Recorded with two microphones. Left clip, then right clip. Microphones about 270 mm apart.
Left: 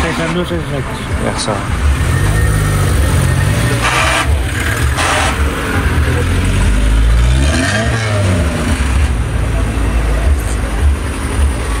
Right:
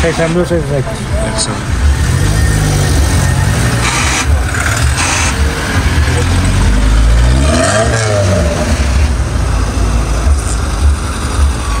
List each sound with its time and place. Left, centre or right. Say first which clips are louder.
3.9 s vehicle: left 3 dB; left
7.4 s vehicle: right 4 dB; right